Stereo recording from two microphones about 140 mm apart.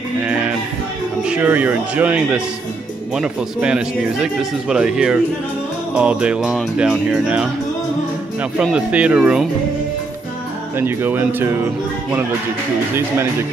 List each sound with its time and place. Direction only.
0.2 s music: 10° right (ahead or behind)
3.2 s a man's voice: 5° right (ahead or behind)
5.9 s music: 10° right (ahead or behind)
8.7 s music: 10° right (ahead or behind)
10.8 s music: 15° right (ahead or behind)